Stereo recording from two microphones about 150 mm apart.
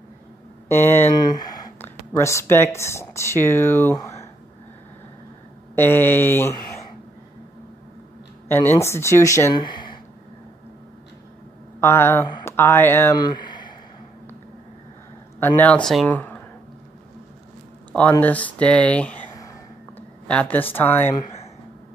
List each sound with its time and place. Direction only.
0.7 s speech: 15° left (ahead or behind)
1.1 s speech: 25° left (ahead or behind)
5.8 s speech: 15° left (ahead or behind)
8.5 s speech: 15° left (ahead or behind); by 9.9 s 30° left (ahead or behind)
11.8 s speech: 15° left (ahead or behind)
13.2 s a sound: 30° left (ahead or behind)
15.4 s speech: 10° left (ahead or behind)
16.1 s a sound: 10° left (ahead or behind)
18.2 s speech: 10° left (ahead or behind)